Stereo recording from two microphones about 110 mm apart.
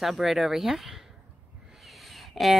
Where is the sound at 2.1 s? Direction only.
Centre (ahead or behind).